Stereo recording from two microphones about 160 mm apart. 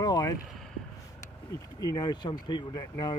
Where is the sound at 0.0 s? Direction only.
25° left (ahead or behind).